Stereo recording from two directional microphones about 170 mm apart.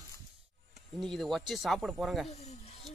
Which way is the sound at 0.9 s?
Centre (ahead or behind).